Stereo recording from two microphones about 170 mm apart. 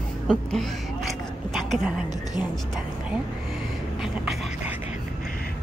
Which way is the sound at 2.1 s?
25° left (ahead or behind).